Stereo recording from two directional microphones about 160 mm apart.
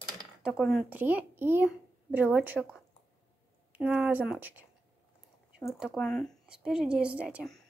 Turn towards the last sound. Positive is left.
turn(degrees=-5)  # may be behind; listen again after turning